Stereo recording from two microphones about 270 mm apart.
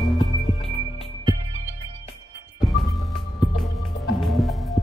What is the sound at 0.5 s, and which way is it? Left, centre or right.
Music, left.